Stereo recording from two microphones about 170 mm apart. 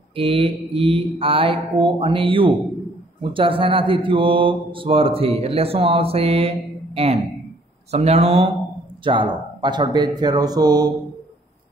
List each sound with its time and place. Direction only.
0.1 s mantra: 30° right (ahead or behind)
9.0 s speech: 30° right (ahead or behind)